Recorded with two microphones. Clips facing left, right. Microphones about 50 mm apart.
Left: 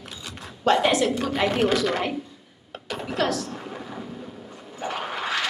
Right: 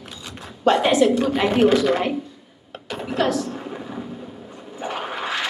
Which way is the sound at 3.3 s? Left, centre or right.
Right.